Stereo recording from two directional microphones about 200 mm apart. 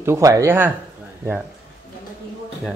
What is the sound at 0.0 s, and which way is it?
Speech, 15° right (ahead or behind).